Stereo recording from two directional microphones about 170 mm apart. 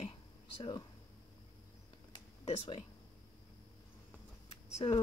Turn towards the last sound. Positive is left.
turn(degrees=30)  # may be behind; listen again after turning